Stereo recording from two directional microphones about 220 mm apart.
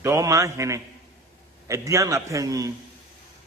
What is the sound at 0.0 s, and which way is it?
A man's voice, 15° right (ahead or behind).